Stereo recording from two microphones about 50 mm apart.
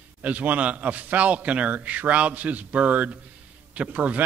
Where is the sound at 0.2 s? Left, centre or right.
Right.